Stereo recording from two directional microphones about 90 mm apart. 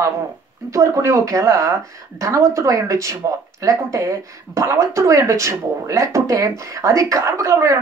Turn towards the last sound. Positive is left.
turn(degrees=-35)  # may be behind; listen again after turning